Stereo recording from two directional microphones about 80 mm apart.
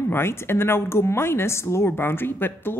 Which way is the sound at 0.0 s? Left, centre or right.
Left.